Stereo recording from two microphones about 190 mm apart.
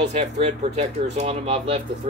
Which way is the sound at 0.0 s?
35° right (ahead or behind).